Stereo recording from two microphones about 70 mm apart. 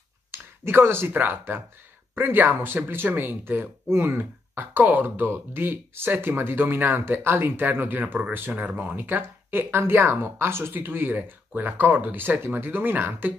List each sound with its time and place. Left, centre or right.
0.3 s speech: right